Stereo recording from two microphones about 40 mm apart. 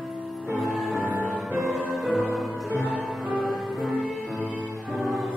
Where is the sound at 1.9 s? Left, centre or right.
Centre.